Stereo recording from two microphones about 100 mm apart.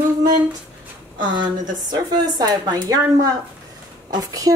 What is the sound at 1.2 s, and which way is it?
A woman's voice, 45° right (ahead or behind).